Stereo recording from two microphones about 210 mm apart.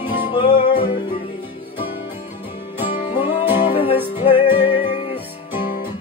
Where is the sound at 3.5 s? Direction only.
25° left (ahead or behind).